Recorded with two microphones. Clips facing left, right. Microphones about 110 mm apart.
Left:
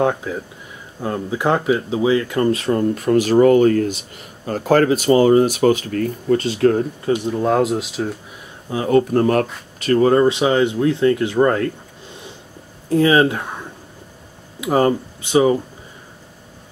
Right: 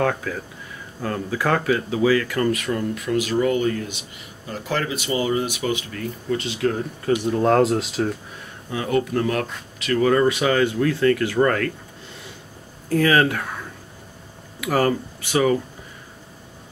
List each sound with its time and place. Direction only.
0.0 s speech: 20° left (ahead or behind); by 6.8 s 40° left (ahead or behind)
7.2 s speech: 5° left (ahead or behind)
8.6 s speech: 30° left (ahead or behind)
12.9 s speech: 25° left (ahead or behind)